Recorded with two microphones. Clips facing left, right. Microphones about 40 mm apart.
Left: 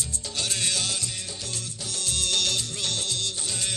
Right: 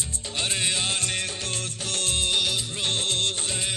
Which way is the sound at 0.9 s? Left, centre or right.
Right.